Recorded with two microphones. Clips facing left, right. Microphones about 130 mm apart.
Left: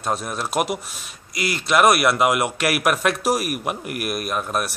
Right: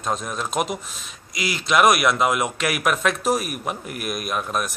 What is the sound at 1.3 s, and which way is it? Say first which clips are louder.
Speech: left 2 dB; 55° left (ahead or behind).